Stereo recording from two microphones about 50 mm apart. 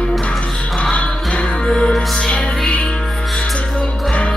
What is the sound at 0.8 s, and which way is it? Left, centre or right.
Music, left.